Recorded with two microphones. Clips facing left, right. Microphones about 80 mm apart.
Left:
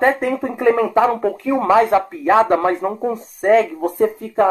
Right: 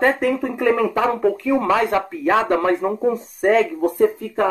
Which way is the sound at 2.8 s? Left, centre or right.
Centre.